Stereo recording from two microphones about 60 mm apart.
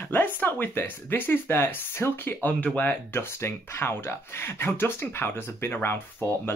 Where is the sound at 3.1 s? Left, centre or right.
Left.